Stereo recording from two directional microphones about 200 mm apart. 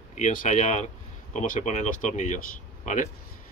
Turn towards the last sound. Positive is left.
turn(degrees=35)  # may be behind; listen again after turning